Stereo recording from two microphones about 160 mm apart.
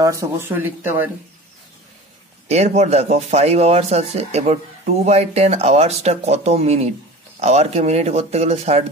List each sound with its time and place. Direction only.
0.0 s speech: 20° right (ahead or behind)
2.4 s speech: 40° right (ahead or behind)